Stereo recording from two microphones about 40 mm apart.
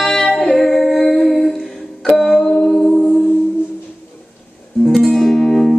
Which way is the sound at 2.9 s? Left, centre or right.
Left.